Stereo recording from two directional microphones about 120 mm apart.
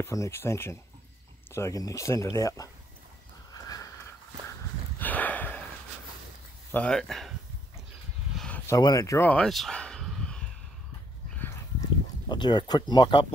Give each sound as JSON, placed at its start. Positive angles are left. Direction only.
{"t": 0.0, "sound": "speech", "side_deg": 25}
{"t": 3.5, "sound": "walk", "side_deg": 30}
{"t": 6.7, "sound": "speech", "side_deg": 10}
{"t": 8.6, "sound": "speech", "side_deg": 30}
{"t": 9.3, "sound": "a sound", "side_deg": 5}
{"t": 12.3, "sound": "speech", "side_deg": 40}